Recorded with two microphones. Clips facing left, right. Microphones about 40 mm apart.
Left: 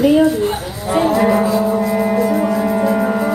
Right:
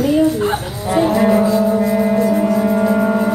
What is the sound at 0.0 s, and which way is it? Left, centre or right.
Livestock, left.